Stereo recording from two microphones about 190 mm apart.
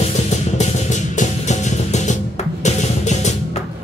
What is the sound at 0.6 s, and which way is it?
Music, 40° left (ahead or behind).